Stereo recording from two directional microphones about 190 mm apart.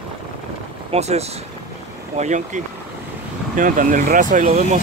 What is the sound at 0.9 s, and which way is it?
Speech, 35° right (ahead or behind).